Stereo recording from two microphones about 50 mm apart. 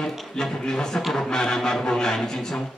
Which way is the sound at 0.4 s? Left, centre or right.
Centre.